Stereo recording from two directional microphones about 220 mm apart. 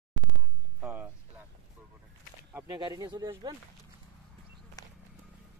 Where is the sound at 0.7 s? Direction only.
5° right (ahead or behind).